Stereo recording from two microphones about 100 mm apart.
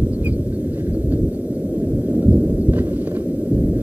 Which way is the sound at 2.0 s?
15° right (ahead or behind).